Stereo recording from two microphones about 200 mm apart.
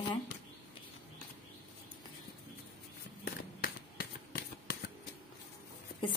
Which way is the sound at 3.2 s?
50° left (ahead or behind).